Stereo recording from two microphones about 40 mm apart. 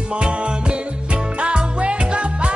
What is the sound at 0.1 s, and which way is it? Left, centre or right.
Music, right.